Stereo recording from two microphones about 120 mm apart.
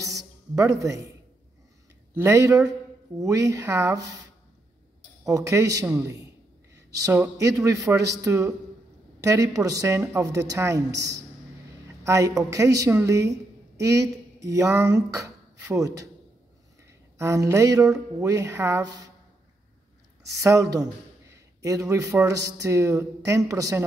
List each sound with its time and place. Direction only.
0.0 s music: 25° right (ahead or behind)
2.1 s a man's voice: 25° right (ahead or behind)
5.2 s a man's voice: 25° right (ahead or behind)
17.2 s a man's voice: 25° right (ahead or behind)
20.3 s a man's voice: 25° right (ahead or behind)